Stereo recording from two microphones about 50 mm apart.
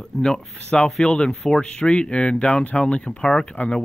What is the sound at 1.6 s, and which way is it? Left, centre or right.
Speech, centre.